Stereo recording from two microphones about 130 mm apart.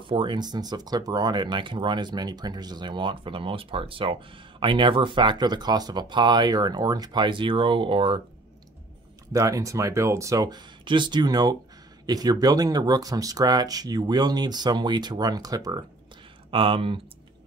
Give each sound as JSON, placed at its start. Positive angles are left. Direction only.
{"t": 0.0, "sound": "speech", "side_deg": -40}
{"t": 9.3, "sound": "speech", "side_deg": -25}
{"t": 16.4, "sound": "speech", "side_deg": -45}